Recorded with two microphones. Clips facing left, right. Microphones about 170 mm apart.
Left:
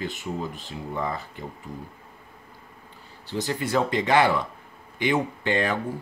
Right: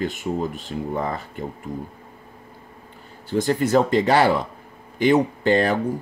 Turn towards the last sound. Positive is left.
turn(degrees=-40)  # may be behind; listen again after turning